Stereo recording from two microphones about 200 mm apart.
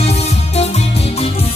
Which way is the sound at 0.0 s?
30° left (ahead or behind).